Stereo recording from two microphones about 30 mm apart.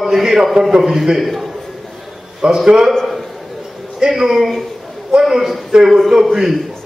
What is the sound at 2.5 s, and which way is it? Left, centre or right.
Speech, right.